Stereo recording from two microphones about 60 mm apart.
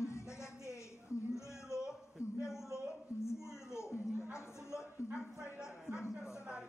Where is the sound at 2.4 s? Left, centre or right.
Left.